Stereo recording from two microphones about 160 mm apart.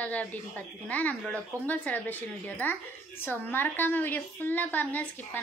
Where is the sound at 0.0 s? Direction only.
10° left (ahead or behind).